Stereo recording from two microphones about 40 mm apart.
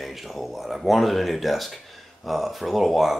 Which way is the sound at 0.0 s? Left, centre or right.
Centre.